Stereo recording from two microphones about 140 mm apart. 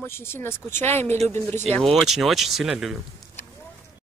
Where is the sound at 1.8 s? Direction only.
Centre (ahead or behind).